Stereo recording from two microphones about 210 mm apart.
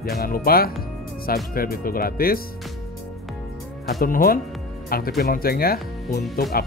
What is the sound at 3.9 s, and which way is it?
Speech, 45° left (ahead or behind).